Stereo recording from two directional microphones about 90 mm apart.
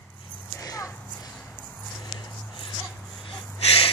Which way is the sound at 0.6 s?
35° left (ahead or behind).